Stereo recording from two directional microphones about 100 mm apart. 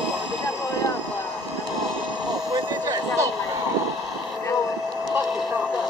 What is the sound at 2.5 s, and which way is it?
Vehicle, 35° right (ahead or behind).